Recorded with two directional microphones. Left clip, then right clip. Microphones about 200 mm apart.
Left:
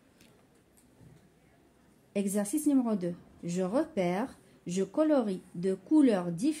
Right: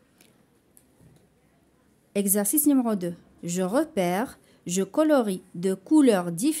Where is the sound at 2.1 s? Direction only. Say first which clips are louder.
Right 6 dB; 40° right (ahead or behind).